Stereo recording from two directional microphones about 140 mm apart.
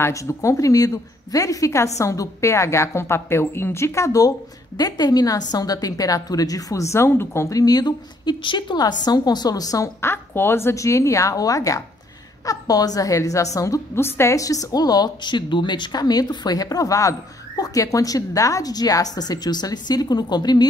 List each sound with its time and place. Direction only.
0.0 s a woman's voice: 20° left (ahead or behind)